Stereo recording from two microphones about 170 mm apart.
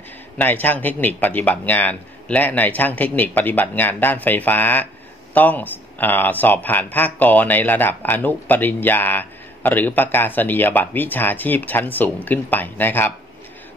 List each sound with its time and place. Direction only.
0.4 s speech: 10° left (ahead or behind)